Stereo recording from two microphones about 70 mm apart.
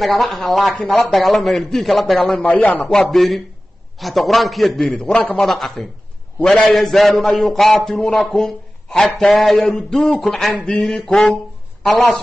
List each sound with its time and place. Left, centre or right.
0.0 s a man's voice: centre
2.6 s a man's voice: left
2.9 s a man's voice: centre
5.5 s a man's voice: centre
10.5 s a man's voice: centre
10.8 s a man's voice: centre